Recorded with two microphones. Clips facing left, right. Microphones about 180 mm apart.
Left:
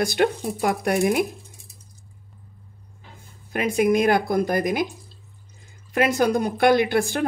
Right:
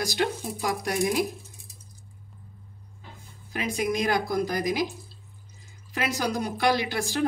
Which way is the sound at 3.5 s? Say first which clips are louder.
Left 8 dB; 60° left (ahead or behind).